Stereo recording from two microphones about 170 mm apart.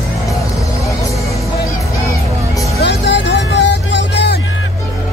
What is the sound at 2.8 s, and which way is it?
Music, 90° left.